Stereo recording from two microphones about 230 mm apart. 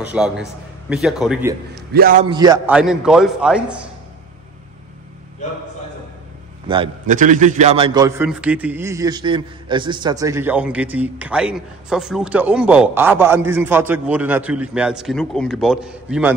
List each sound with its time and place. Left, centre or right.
0.0 s a man's voice: centre
2.0 s a man's voice: right
2.2 s a man's voice: centre
2.7 s a man's voice: centre
6.7 s a man's voice: right
7.1 s a man's voice: right; by 8.3 s centre
8.3 s a man's voice: centre